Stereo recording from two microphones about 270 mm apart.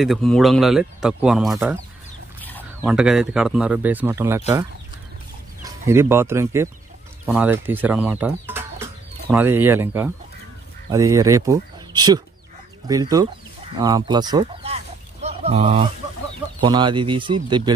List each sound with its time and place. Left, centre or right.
0.0 s speech: centre
5.6 s speech: centre